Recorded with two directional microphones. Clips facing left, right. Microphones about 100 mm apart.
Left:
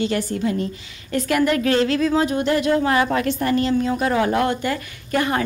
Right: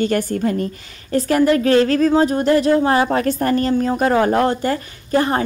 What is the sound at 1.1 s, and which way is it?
A woman's voice, 35° right (ahead or behind).